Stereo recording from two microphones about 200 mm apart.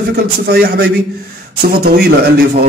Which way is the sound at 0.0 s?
50° right (ahead or behind).